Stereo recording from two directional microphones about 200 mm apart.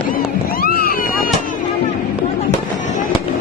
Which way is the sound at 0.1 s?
45° left (ahead or behind).